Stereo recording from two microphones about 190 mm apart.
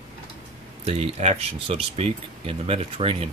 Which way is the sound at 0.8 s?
35° right (ahead or behind).